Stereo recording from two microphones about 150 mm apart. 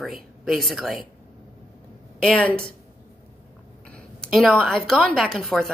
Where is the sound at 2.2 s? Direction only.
5° left (ahead or behind).